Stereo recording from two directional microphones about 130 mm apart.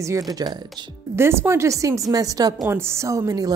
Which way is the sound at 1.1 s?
20° right (ahead or behind).